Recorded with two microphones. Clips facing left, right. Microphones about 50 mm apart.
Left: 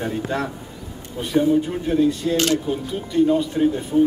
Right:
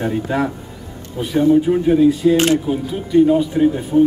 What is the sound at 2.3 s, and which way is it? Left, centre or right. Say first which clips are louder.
Speech: right 5 dB; right.